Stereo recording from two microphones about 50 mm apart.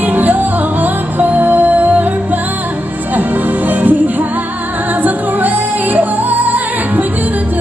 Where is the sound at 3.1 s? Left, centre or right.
Right.